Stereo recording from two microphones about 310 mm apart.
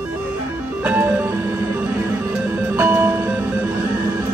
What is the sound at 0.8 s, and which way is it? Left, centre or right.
Music, centre.